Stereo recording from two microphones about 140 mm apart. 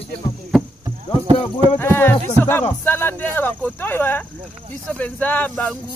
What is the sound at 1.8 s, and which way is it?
Speech, 15° left (ahead or behind).